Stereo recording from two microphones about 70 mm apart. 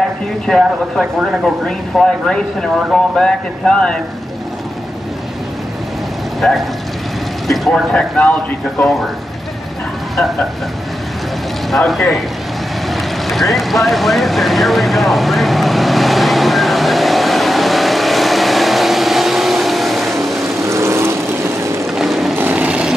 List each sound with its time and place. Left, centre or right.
0.5 s speech: centre
6.4 s speech: centre
7.9 s speech: centre
11.7 s speech: centre
12.9 s boat: centre
20.4 s vehicle: right
21.9 s boat: centre
22.3 s vehicle: right